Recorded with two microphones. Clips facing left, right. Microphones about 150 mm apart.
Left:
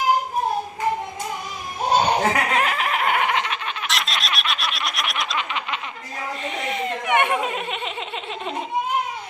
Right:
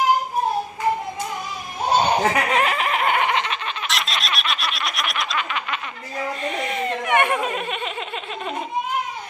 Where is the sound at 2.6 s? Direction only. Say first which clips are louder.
Right 1 dB; centre (ahead or behind).